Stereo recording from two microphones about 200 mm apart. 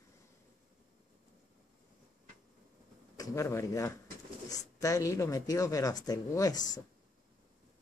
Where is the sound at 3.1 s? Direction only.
15° left (ahead or behind).